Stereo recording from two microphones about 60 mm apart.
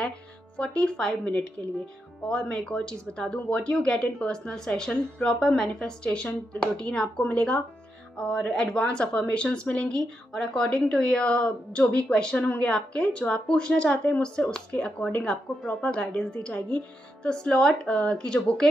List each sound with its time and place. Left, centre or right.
0.6 s speech: centre
2.4 s speech: centre
6.0 s speech: left